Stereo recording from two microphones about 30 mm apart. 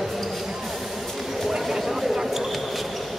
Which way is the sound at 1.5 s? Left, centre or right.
Centre.